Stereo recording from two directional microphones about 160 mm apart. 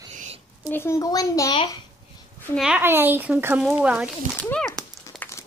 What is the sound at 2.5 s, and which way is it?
Speech, 5° right (ahead or behind).